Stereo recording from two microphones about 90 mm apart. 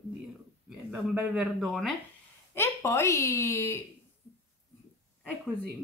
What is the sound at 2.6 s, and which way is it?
Speech, 30° left (ahead or behind).